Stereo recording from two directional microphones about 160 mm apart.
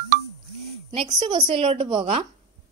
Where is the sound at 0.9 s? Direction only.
40° right (ahead or behind).